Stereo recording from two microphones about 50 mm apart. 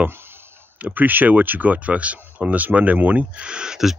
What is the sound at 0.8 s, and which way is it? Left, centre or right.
Speech, right.